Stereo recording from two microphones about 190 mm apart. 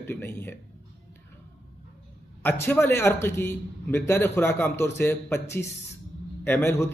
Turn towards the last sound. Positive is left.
turn(degrees=15)  # may be behind; listen again after turning